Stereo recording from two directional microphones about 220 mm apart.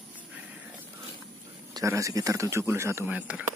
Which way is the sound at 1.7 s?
15° right (ahead or behind).